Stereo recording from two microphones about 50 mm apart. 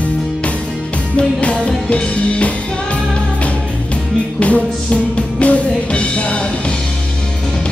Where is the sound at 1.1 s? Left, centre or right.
Left.